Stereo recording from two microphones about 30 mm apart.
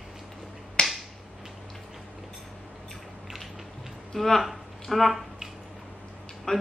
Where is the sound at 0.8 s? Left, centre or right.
Left.